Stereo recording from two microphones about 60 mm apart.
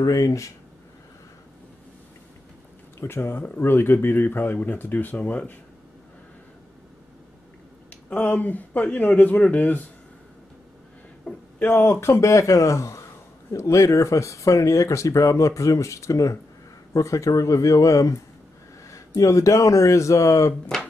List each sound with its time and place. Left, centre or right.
0.0 s speech: left
3.0 s speech: left
8.1 s speech: left
11.3 s a sound: centre
11.6 s speech: left
11.9 s speech: left